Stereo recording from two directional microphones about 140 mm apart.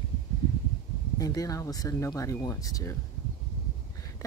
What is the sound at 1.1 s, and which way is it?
Speech, 25° left (ahead or behind).